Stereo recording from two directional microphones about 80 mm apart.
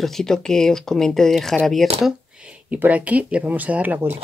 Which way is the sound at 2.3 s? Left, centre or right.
Centre.